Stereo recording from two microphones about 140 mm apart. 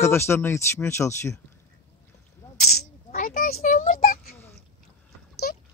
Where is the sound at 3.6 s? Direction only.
70° left (ahead or behind).